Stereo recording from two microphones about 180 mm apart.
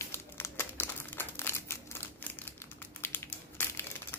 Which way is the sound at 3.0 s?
15° left (ahead or behind).